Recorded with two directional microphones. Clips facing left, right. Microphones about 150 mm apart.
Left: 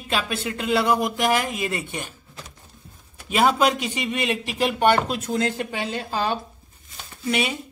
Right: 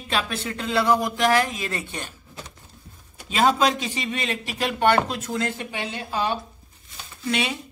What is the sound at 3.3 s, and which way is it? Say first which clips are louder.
A man's voice: left 1 dB; 10° left (ahead or behind).